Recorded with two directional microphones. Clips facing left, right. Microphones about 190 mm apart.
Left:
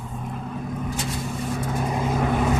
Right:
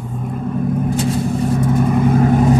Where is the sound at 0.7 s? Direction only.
55° right (ahead or behind).